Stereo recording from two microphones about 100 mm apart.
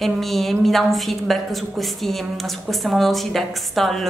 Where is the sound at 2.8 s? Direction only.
Centre (ahead or behind).